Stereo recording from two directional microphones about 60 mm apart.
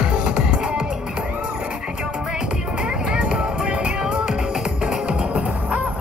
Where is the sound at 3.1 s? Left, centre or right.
Centre.